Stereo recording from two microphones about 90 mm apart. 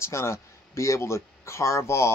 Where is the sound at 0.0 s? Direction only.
30° left (ahead or behind).